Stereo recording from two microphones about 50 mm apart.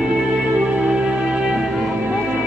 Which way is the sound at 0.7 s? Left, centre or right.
Right.